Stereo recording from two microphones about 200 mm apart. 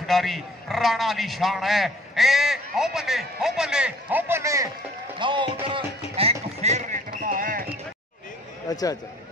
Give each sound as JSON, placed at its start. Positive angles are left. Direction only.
{"t": 0.0, "sound": "a man's voice", "side_deg": 0}
{"t": 5.2, "sound": "a sound", "side_deg": -25}
{"t": 8.6, "sound": "speech", "side_deg": 20}